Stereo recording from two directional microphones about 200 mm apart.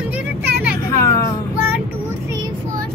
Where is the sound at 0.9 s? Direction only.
15° left (ahead or behind).